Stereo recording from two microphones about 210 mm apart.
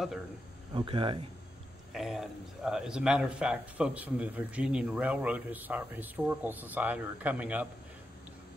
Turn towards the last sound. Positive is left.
turn(degrees=-5)  # may be behind; listen again after turning